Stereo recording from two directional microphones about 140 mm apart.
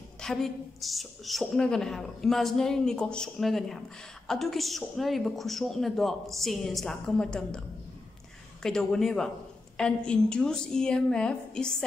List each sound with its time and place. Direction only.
0.2 s a woman's voice: 5° left (ahead or behind)
8.6 s a woman's voice: 5° left (ahead or behind)